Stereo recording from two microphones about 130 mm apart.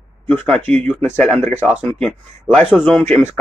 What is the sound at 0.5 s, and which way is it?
Speech, 55° right (ahead or behind).